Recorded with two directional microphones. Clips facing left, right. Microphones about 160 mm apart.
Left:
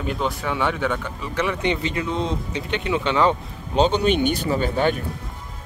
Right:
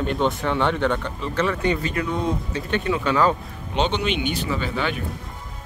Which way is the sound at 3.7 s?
35° left (ahead or behind).